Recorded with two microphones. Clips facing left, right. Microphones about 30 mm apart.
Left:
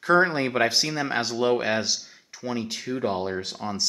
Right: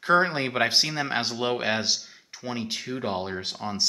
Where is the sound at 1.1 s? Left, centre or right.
Right.